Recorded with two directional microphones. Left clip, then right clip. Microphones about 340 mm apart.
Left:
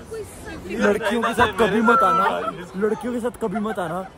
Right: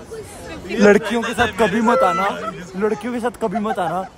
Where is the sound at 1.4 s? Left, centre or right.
Centre.